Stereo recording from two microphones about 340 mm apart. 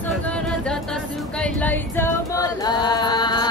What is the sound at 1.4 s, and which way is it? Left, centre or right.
Singing, centre.